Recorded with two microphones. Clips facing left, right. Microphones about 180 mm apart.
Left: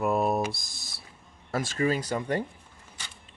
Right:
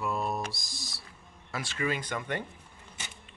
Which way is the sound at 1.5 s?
40° left (ahead or behind).